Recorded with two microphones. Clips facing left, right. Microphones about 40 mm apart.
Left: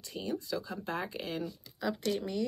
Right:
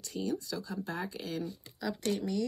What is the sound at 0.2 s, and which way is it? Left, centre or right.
Speech, left.